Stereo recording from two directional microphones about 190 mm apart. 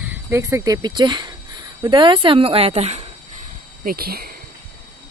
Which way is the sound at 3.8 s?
50° right (ahead or behind).